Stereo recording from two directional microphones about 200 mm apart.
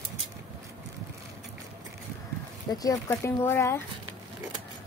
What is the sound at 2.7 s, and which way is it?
Speech, 15° left (ahead or behind).